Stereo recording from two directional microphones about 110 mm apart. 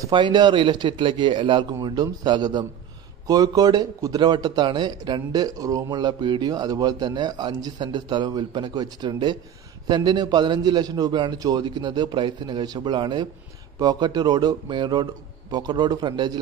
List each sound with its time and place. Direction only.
0.1 s a man's voice: 45° right (ahead or behind)